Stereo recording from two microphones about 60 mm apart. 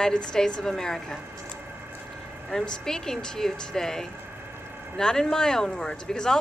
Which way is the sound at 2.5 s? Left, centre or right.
Centre.